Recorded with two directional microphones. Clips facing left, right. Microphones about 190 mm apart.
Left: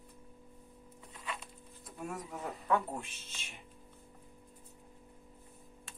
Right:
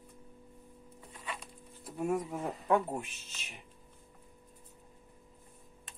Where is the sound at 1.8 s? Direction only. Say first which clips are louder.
Right 9 dB; 25° right (ahead or behind).